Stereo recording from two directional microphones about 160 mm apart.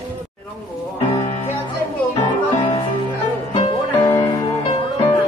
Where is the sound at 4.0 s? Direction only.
25° left (ahead or behind).